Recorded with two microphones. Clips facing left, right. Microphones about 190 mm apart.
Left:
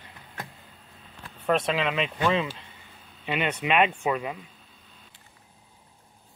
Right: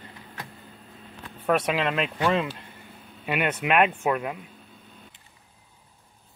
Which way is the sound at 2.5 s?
55° right (ahead or behind).